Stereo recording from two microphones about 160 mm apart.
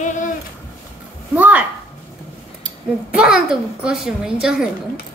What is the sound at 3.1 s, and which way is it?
A woman's voice, 5° right (ahead or behind).